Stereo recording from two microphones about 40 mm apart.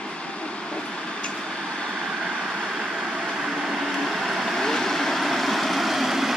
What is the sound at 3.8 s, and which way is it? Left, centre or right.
Vehicle, centre.